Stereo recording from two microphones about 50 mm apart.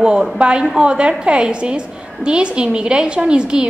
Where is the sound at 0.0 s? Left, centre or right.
Centre.